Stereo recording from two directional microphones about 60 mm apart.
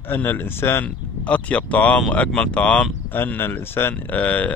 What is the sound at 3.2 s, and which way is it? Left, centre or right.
Speech, left.